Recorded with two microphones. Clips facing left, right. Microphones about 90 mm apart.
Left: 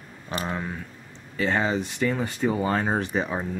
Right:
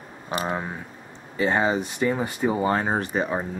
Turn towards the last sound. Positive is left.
turn(degrees=-10)  # may be behind; listen again after turning